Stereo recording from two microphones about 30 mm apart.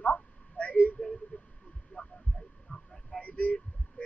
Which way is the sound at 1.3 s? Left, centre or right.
Left.